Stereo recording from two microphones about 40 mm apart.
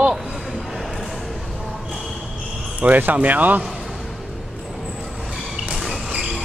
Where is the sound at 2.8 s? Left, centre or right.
Right.